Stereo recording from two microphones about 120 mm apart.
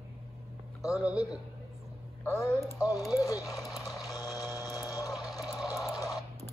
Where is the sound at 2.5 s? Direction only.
25° right (ahead or behind).